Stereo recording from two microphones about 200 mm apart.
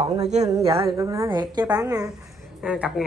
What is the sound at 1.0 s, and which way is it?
A woman's voice, 15° right (ahead or behind).